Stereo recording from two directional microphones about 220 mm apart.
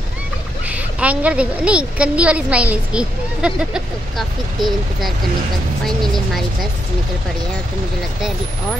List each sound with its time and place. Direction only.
0.7 s a woman's voice: 5° right (ahead or behind)